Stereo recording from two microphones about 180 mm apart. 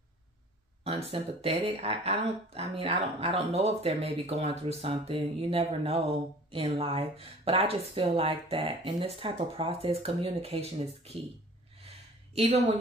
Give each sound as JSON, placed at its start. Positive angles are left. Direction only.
{"t": 1.1, "sound": "speech", "side_deg": -30}
{"t": 12.4, "sound": "speech", "side_deg": -35}